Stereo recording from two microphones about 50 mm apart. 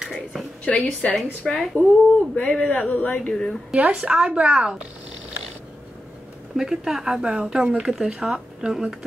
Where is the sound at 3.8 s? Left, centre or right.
Right.